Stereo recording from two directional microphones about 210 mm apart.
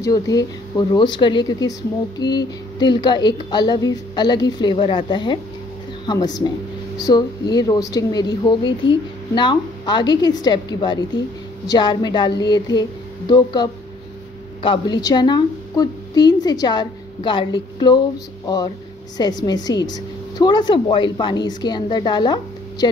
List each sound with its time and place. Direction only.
0.0 s a woman's voice: 15° left (ahead or behind)
19.1 s speech: 20° left (ahead or behind)